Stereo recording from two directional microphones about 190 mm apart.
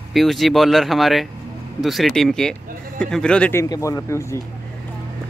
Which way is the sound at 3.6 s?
20° left (ahead or behind).